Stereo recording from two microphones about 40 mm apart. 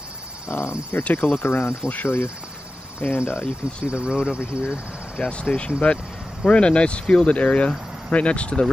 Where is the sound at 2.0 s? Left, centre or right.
Left.